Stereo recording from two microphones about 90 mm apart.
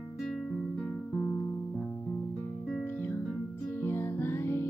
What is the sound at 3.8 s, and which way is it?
Music, 25° left (ahead or behind).